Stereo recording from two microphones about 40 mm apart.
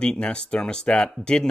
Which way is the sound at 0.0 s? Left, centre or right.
Left.